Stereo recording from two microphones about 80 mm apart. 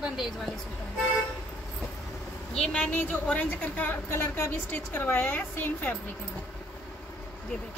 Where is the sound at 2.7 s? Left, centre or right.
Centre.